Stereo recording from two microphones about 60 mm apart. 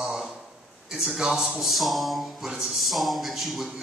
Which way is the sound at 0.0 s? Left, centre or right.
Centre.